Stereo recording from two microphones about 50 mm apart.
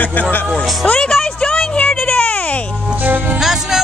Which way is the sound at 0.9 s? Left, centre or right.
Centre.